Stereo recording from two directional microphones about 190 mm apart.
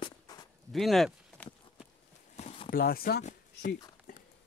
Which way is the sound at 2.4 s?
30° left (ahead or behind).